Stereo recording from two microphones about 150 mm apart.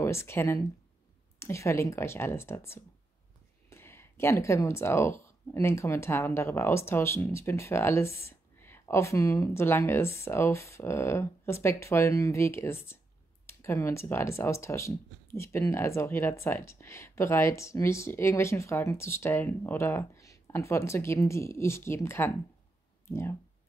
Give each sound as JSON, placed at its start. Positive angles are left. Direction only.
{"t": 0.0, "sound": "speech", "side_deg": 15}